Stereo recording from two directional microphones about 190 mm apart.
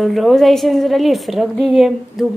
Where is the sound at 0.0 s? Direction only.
Centre (ahead or behind).